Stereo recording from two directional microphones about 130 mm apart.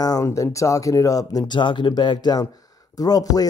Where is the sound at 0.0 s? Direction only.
25° left (ahead or behind).